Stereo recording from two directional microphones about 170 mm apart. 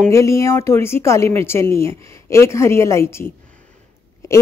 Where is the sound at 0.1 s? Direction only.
15° left (ahead or behind).